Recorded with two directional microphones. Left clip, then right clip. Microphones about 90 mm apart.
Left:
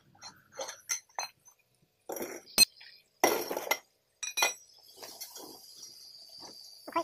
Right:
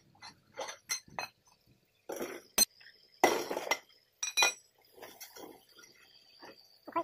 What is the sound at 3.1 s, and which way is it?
Glass, 25° left (ahead or behind).